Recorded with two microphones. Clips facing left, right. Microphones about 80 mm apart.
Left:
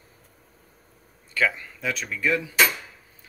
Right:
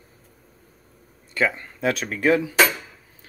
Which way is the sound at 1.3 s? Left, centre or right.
Right.